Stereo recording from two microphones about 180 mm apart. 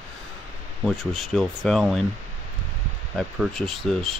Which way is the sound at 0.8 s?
Centre (ahead or behind).